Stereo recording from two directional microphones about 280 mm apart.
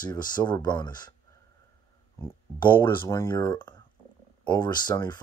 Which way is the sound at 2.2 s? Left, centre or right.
Centre.